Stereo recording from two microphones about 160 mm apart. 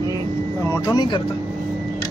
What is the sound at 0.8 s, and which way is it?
Speech, 30° left (ahead or behind).